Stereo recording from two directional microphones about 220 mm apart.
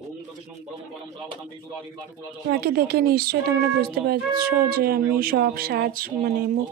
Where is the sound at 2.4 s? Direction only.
45° right (ahead or behind).